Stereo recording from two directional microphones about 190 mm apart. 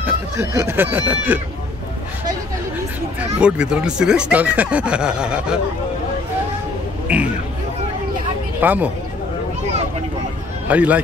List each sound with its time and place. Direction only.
0.0 s speech: 15° right (ahead or behind)
3.3 s speech: 5° right (ahead or behind)
7.1 s speech: 5° right (ahead or behind)
8.5 s speech: 10° right (ahead or behind)
10.7 s speech: 5° right (ahead or behind)